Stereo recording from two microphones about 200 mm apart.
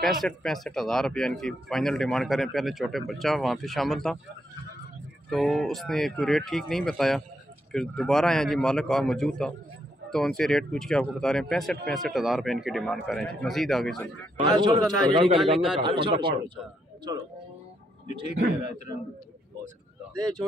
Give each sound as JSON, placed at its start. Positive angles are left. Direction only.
{"t": 0.0, "sound": "a man's voice", "side_deg": 0}
{"t": 5.3, "sound": "a man's voice", "side_deg": 0}
{"t": 14.4, "sound": "a man's voice", "side_deg": -20}
{"t": 15.3, "sound": "a man's voice", "side_deg": -5}
{"t": 15.8, "sound": "a man's voice", "side_deg": -25}